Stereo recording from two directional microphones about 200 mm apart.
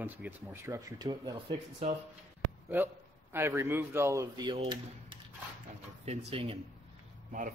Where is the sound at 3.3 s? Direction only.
15° right (ahead or behind); by 6.6 s 30° right (ahead or behind).